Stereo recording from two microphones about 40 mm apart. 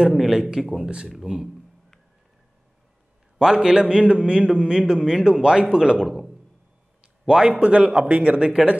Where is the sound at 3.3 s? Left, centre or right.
Centre.